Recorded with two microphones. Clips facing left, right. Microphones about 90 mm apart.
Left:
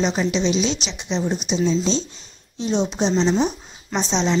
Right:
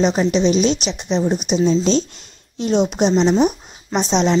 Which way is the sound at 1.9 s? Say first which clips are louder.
Right 5 dB; 65° right (ahead or behind).